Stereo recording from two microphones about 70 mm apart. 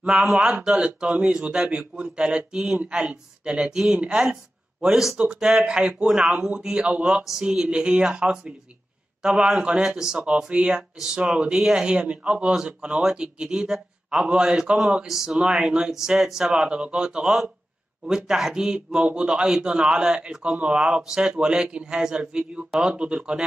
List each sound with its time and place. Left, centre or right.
0.0 s speech: centre
7.2 s speech: centre